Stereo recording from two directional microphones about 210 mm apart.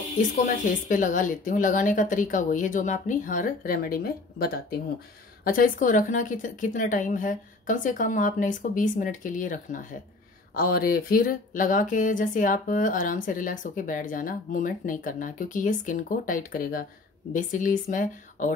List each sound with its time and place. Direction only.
0.2 s speech: 40° left (ahead or behind)